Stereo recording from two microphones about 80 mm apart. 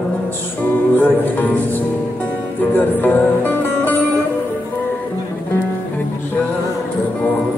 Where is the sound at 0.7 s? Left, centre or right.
Left.